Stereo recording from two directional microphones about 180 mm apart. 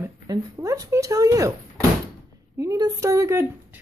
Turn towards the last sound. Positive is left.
turn(degrees=-15)  # may be behind; listen again after turning